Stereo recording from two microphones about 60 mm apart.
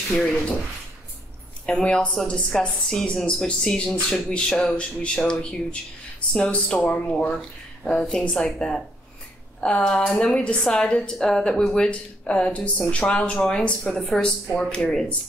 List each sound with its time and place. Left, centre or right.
0.1 s a woman's voice: centre
1.7 s a woman's voice: centre